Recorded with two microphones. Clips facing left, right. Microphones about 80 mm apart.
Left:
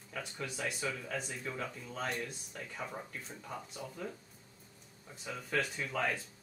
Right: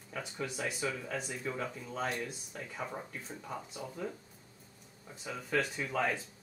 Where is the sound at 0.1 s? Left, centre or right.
Centre.